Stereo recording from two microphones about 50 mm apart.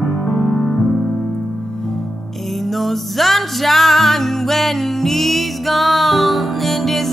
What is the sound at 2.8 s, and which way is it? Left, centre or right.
Music, centre.